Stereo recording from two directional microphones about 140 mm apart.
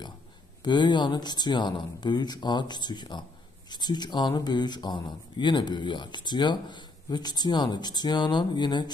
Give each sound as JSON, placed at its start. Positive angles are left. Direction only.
{"t": 0.7, "sound": "speech", "side_deg": 35}